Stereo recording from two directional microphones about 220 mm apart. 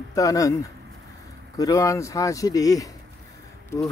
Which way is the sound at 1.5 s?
15° left (ahead or behind).